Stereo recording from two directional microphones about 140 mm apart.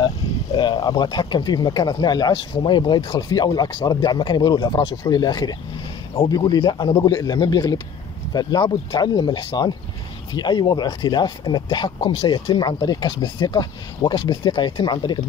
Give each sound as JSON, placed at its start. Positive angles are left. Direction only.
{"t": 0.0, "sound": "speech", "side_deg": 30}